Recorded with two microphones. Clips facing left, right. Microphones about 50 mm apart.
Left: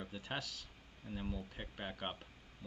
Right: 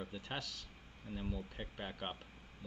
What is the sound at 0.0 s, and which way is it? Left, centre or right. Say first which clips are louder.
Speech: even; centre.